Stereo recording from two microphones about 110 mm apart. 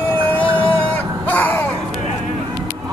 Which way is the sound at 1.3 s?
15° left (ahead or behind).